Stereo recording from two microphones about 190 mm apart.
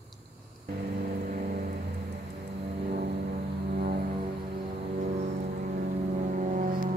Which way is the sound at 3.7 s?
50° right (ahead or behind).